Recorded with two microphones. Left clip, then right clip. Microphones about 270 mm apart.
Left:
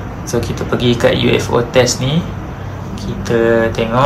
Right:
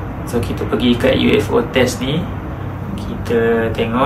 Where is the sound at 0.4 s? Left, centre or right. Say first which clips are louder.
Left 1 dB; left.